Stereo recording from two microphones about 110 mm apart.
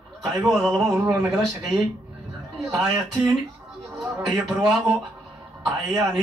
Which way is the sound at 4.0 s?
Centre (ahead or behind).